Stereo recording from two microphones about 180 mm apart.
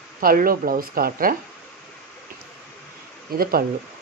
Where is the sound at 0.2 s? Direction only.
55° right (ahead or behind).